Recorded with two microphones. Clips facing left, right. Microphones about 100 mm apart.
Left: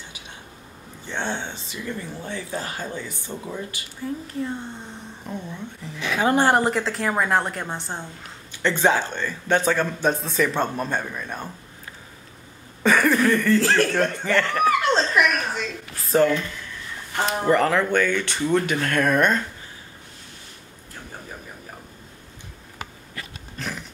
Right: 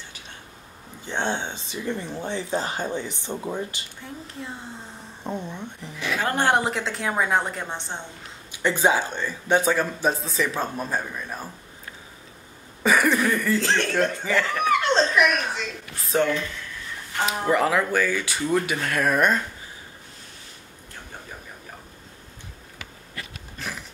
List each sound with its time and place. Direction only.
1.0 s speech: 15° right (ahead or behind)
4.0 s speech: centre (ahead or behind)
5.2 s speech: 20° right (ahead or behind)
6.1 s speech: 10° left (ahead or behind)
8.5 s speech: 10° right (ahead or behind)
12.8 s a sound: 5° right (ahead or behind)
13.7 s speech: 5° left (ahead or behind)
17.5 s speech: 5° right (ahead or behind)
23.6 s sniff: centre (ahead or behind)